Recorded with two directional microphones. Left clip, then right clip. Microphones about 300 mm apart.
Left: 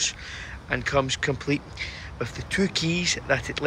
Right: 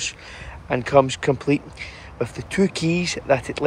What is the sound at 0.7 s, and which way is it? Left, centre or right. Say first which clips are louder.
Speech: right 7 dB; centre.